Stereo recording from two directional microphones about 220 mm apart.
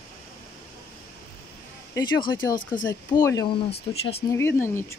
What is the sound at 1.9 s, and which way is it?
Speech, 20° left (ahead or behind).